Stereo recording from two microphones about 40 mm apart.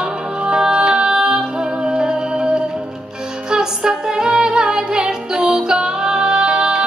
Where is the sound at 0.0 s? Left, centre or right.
Right.